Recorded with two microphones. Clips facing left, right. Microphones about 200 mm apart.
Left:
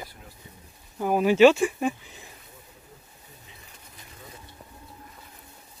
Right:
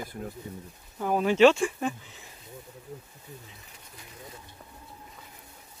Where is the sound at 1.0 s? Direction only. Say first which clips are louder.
Left 3 dB; 10° left (ahead or behind).